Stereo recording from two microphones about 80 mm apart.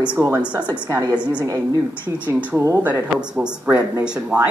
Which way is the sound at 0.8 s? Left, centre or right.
Right.